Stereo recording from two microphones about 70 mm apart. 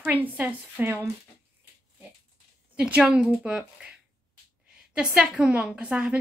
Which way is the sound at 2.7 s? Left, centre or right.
Centre.